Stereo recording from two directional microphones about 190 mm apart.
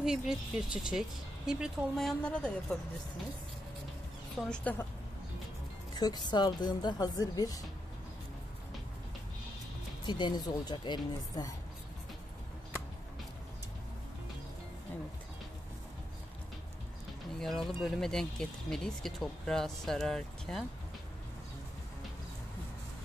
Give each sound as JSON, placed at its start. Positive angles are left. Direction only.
{"t": 0.0, "sound": "speech", "side_deg": -5}
{"t": 4.4, "sound": "a woman's voice", "side_deg": 5}
{"t": 5.9, "sound": "speech", "side_deg": 20}
{"t": 10.0, "sound": "speech", "side_deg": 25}
{"t": 17.4, "sound": "speech", "side_deg": 0}